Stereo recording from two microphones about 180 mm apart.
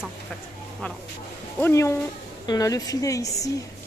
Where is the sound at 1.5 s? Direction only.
15° left (ahead or behind).